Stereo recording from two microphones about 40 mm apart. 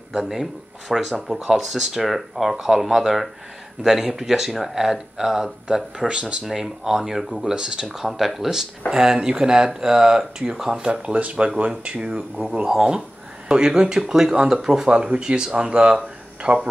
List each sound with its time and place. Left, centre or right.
0.1 s speech: centre
5.9 s speech: right
6.4 s speech: centre
8.9 s speech: centre
12.6 s speech: centre
14.9 s speech: right
16.0 s a sound: right